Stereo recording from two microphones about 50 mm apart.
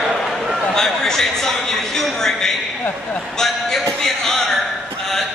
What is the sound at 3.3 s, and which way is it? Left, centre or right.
Speech, centre.